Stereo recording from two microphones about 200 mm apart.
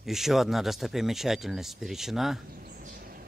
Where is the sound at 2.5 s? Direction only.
45° right (ahead or behind).